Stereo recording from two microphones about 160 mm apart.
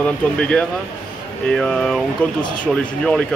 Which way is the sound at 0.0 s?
5° left (ahead or behind).